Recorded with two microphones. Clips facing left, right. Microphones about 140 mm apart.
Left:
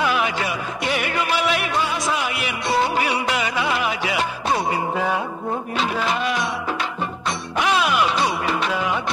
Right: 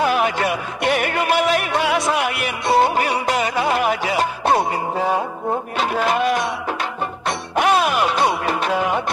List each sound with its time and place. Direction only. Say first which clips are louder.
0.0 s music: right 3 dB; 45° right (ahead or behind)
1.7 s music: right 4 dB; 70° right (ahead or behind); by 5.2 s 35° right (ahead or behind)
5.8 s music: right 4 dB; 50° right (ahead or behind)